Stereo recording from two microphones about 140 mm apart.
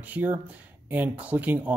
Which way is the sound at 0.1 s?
10° right (ahead or behind).